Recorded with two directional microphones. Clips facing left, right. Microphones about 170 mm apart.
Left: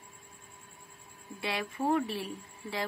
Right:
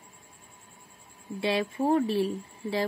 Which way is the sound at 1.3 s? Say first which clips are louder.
Right 7 dB; 25° right (ahead or behind).